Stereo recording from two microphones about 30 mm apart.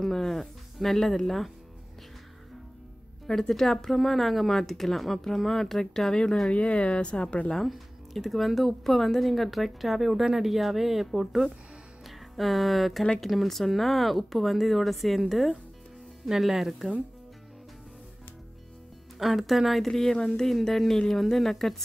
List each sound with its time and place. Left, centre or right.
0.1 s speech: centre
0.4 s music: centre
0.9 s speech: centre
3.3 s speech: centre
6.5 s speech: left
7.6 s speech: centre
19.1 s speech: centre
19.9 s speech: centre